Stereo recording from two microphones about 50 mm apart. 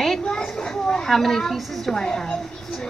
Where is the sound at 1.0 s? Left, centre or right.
Centre.